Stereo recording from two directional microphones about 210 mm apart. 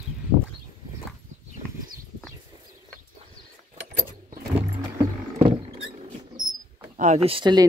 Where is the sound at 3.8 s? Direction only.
50° right (ahead or behind).